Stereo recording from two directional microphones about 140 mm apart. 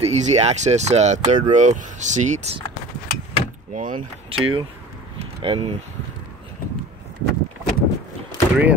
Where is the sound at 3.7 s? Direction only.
65° right (ahead or behind).